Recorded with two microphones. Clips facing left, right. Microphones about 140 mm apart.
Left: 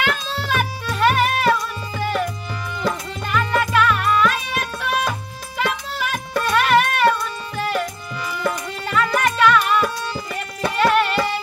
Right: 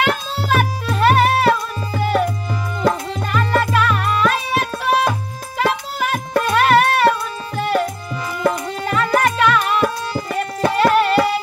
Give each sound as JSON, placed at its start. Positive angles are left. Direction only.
{"t": 0.0, "sound": "music", "side_deg": -40}